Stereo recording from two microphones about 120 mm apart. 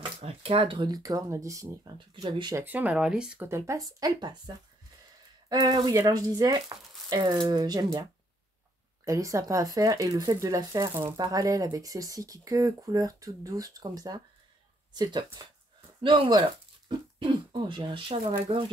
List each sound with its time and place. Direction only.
0.0 s speech: 55° right (ahead or behind); by 1.8 s 25° right (ahead or behind)
2.0 s speech: 40° right (ahead or behind)
2.5 s speech: 15° right (ahead or behind)
3.4 s speech: 25° right (ahead or behind)
5.5 s speech: 35° right (ahead or behind); by 18.7 s 50° right (ahead or behind)